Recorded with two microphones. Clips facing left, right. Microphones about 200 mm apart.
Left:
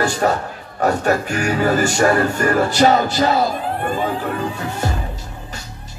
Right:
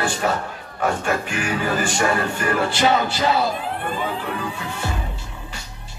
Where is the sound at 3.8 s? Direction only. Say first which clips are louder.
Left 5 dB; 45° left (ahead or behind).